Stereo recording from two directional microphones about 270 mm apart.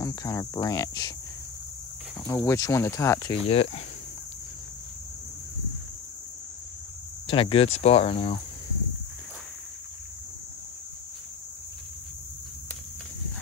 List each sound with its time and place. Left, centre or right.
0.0 s speech: centre
2.2 s speech: centre
7.2 s speech: centre